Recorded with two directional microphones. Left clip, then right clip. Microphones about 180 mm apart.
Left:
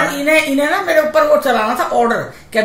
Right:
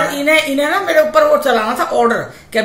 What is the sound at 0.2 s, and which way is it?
A woman's voice, 20° right (ahead or behind).